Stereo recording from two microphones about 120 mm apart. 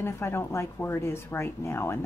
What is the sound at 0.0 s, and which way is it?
A woman's voice, 20° left (ahead or behind).